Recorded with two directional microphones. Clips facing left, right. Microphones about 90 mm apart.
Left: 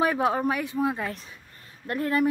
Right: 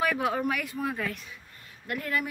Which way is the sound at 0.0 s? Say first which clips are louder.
Left 4 dB; 30° left (ahead or behind).